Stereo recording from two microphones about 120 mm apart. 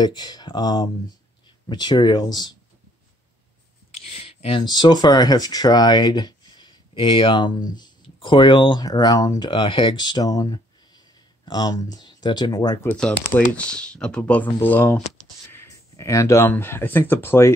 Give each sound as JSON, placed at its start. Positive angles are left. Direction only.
{"t": 0.0, "sound": "speech", "side_deg": 35}
{"t": 3.9, "sound": "a sound", "side_deg": 55}
{"t": 5.0, "sound": "speech", "side_deg": 35}
{"t": 9.5, "sound": "speech", "side_deg": 40}
{"t": 12.9, "sound": "speech", "side_deg": 10}
{"t": 15.5, "sound": "a sound", "side_deg": 25}
{"t": 16.4, "sound": "speech", "side_deg": 20}